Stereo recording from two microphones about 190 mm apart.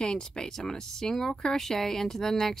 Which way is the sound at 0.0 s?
5° left (ahead or behind).